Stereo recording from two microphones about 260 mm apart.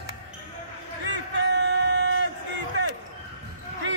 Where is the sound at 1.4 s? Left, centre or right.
Right.